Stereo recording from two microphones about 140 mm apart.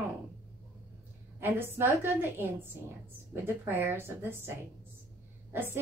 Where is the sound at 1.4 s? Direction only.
15° right (ahead or behind).